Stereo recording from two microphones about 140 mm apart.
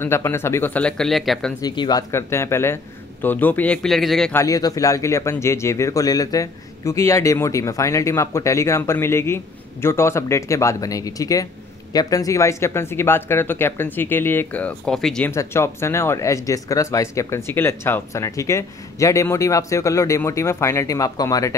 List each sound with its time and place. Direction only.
0.0 s speech: 15° left (ahead or behind); by 1.5 s centre (ahead or behind)
1.6 s speech: 30° left (ahead or behind); by 4.3 s centre (ahead or behind)
4.3 s speech: 20° left (ahead or behind); by 15.3 s 5° left (ahead or behind)
15.3 s speech: 20° left (ahead or behind)